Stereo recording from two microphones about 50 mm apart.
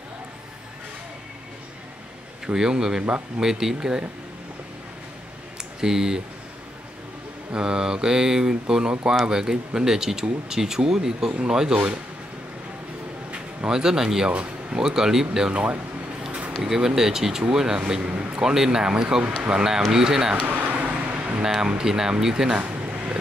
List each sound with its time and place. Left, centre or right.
2.4 s speech: centre
5.8 s speech: centre
7.5 s speech: centre
13.7 s speech: centre
14.3 s speech: right
14.8 s speech: centre
16.3 s a sound: right
16.6 s speech: centre
18.0 s a man's voice: right
18.4 s speech: centre
20.4 s vehicle: right; by 22.6 s centre
22.6 s a sound: right